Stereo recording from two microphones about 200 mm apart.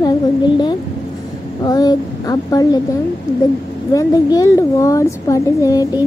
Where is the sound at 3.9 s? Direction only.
15° left (ahead or behind).